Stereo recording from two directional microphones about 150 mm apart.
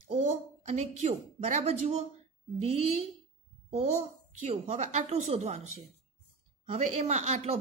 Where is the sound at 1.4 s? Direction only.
45° right (ahead or behind).